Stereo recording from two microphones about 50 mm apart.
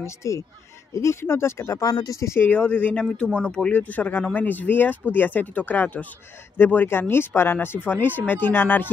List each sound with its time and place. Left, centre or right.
0.0 s speech: left
1.2 s speech: left
2.5 s speech: left
3.7 s speech: left
7.8 s speech: left